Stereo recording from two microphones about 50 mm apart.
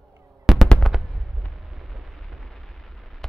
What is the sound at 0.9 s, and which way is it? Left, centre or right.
Fireworks, centre.